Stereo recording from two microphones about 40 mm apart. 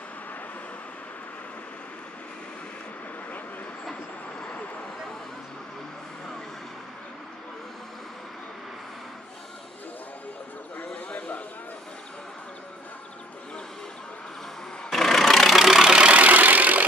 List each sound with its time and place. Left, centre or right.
11.1 s a sound: left
14.9 s vehicle: centre
15.6 s vehicle: centre
16.1 s vehicle: right